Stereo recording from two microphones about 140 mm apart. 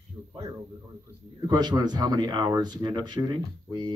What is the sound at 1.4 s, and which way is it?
Speech, 30° right (ahead or behind).